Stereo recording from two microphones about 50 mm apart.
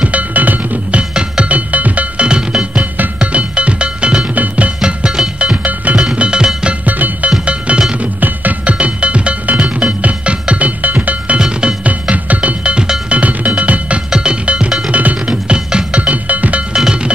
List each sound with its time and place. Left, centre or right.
0.0 s music: right
1.1 s music: right
6.9 s music: right
11.3 s music: centre
15.2 s music: centre
16.7 s music: centre